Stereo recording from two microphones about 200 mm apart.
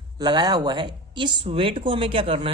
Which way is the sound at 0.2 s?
20° right (ahead or behind).